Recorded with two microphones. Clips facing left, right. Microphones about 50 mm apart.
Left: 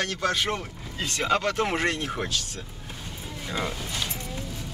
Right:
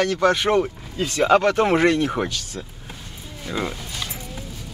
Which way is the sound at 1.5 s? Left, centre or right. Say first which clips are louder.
Right 8 dB; right.